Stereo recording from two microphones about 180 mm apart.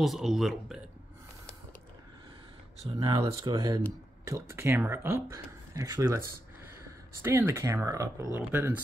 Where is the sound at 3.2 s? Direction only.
20° right (ahead or behind).